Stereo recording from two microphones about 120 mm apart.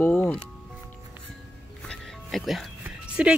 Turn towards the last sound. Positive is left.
turn(degrees=-10)  # may be behind; listen again after turning